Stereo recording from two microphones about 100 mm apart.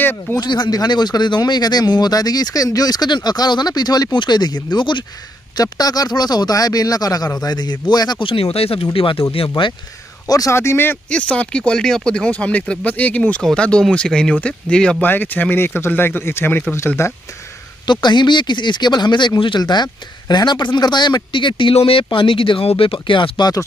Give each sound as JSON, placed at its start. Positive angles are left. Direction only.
{"t": 0.0, "sound": "speech", "side_deg": 20}
{"t": 0.4, "sound": "speech", "side_deg": 45}
{"t": 5.6, "sound": "speech", "side_deg": 40}
{"t": 8.3, "sound": "speech", "side_deg": 75}
{"t": 8.9, "sound": "speech", "side_deg": 60}
{"t": 10.2, "sound": "speech", "side_deg": 40}
{"t": 10.5, "sound": "speech", "side_deg": 25}
{"t": 11.1, "sound": "speech", "side_deg": 10}
{"t": 17.8, "sound": "speech", "side_deg": 50}